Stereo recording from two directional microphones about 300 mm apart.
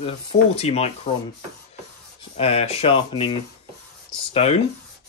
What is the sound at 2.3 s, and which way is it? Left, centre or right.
Speech, centre.